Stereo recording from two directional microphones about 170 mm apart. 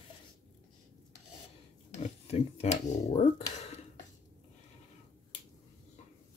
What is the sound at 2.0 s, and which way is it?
Speech, 40° left (ahead or behind).